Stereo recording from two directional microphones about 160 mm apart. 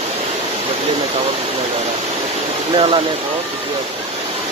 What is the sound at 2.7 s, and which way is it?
Speech, 35° right (ahead or behind).